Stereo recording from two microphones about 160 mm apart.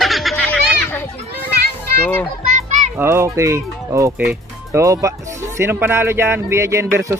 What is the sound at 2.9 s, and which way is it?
Speech, 15° right (ahead or behind).